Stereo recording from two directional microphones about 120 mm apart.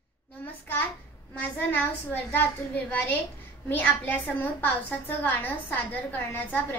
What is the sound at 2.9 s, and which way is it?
A woman's voice, 15° left (ahead or behind).